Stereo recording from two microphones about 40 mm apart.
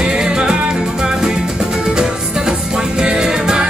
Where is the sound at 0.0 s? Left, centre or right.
Centre.